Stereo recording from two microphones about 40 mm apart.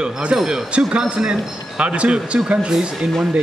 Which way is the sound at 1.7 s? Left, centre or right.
Right.